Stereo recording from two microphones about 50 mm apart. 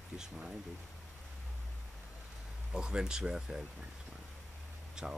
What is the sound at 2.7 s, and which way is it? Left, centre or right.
Speech, centre.